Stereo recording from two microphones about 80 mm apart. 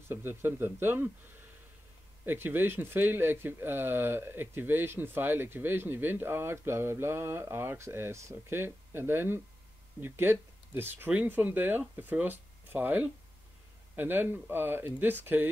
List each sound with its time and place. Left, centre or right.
0.1 s speech: right
2.2 s speech: right